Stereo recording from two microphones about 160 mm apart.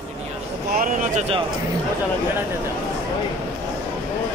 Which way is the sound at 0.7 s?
55° right (ahead or behind).